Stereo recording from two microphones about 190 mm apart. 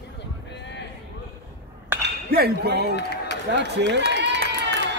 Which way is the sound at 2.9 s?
60° left (ahead or behind).